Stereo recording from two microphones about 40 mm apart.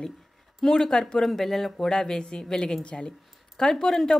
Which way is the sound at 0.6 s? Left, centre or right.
Centre.